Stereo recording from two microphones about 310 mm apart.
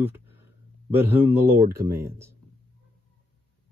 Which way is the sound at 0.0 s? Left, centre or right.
Centre.